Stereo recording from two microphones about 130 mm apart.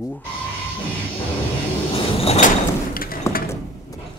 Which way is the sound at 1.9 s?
50° left (ahead or behind).